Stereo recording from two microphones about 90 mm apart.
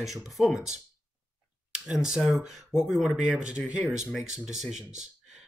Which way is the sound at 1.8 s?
5° right (ahead or behind).